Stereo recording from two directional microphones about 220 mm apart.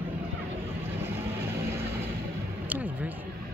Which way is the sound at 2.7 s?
5° right (ahead or behind).